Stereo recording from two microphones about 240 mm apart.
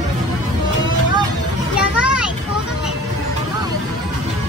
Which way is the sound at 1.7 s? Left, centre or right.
Centre.